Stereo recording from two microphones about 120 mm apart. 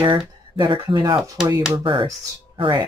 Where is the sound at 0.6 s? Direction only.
40° right (ahead or behind).